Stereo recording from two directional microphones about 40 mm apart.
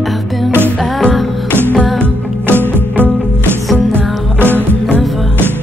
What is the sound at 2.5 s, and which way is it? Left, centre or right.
Music, right.